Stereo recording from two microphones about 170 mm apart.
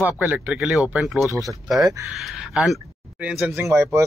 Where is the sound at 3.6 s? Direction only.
15° right (ahead or behind).